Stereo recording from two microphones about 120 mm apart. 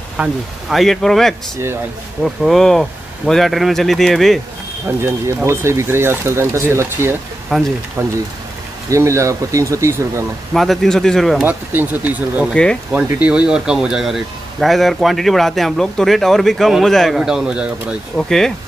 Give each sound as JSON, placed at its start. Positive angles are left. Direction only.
{"t": 0.2, "sound": "speech", "side_deg": 0}
{"t": 5.0, "sound": "speech", "side_deg": -20}
{"t": 7.5, "sound": "speech", "side_deg": 0}
{"t": 8.0, "sound": "speech", "side_deg": -25}
{"t": 10.5, "sound": "speech", "side_deg": 0}
{"t": 11.4, "sound": "speech", "side_deg": -15}
{"t": 18.1, "sound": "speech", "side_deg": 5}